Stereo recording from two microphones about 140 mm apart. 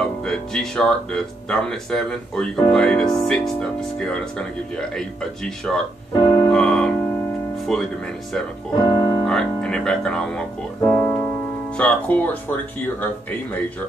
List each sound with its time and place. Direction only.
0.0 s speech: 5° left (ahead or behind)
6.1 s music: 30° left (ahead or behind)
6.5 s music: 5° left (ahead or behind)
8.8 s speech: 30° left (ahead or behind)
9.2 s speech: 5° left (ahead or behind)
10.9 s keyboard: 5° left (ahead or behind)
11.7 s speech: 10° left (ahead or behind)